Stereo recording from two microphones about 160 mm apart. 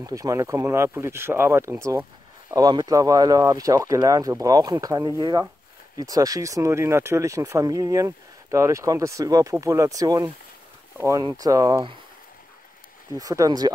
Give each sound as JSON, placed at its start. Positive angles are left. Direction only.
{"t": 0.0, "sound": "speech", "side_deg": -20}
{"t": 13.1, "sound": "speech", "side_deg": -20}